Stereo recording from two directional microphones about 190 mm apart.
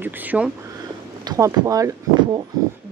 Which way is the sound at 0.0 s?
10° right (ahead or behind).